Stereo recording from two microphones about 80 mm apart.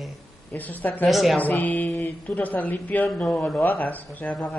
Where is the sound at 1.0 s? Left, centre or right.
Centre.